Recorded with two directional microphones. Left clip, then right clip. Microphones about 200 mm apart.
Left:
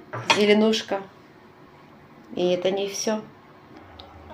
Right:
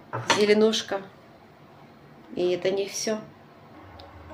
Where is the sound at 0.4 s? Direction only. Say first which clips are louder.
Even; 5° left (ahead or behind).